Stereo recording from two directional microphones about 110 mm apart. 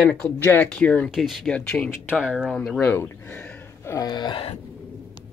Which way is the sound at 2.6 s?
5° left (ahead or behind).